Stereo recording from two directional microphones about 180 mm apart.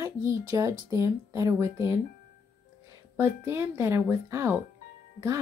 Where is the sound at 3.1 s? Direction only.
15° right (ahead or behind).